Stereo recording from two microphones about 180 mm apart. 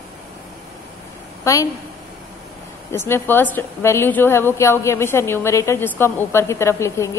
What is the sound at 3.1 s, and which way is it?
A woman's voice, 10° left (ahead or behind).